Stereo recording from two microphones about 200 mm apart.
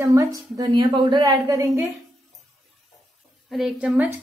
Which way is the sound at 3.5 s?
Centre (ahead or behind).